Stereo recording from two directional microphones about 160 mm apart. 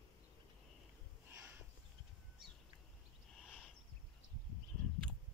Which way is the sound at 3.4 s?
5° right (ahead or behind).